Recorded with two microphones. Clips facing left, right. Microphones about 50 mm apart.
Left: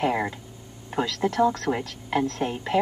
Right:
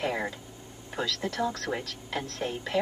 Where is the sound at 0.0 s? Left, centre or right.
Left.